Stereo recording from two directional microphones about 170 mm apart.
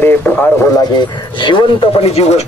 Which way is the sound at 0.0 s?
10° left (ahead or behind).